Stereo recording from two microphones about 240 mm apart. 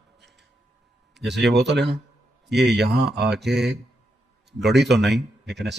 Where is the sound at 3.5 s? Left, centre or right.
Centre.